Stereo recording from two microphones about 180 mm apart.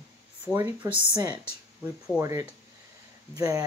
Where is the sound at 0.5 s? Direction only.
15° right (ahead or behind).